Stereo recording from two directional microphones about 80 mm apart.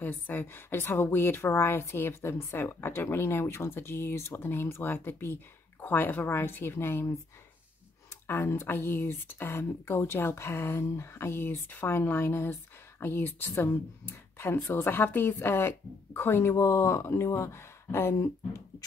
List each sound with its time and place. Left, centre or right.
0.0 s a woman's voice: left
8.3 s a woman's voice: left